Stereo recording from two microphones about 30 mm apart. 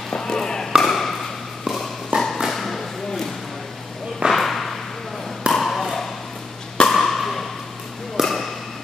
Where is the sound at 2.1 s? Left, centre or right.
Right.